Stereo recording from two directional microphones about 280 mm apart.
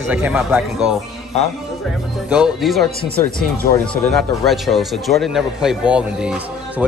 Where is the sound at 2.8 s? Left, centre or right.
Right.